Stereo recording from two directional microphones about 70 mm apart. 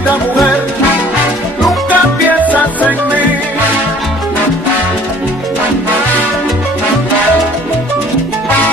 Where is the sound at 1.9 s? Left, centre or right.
Right.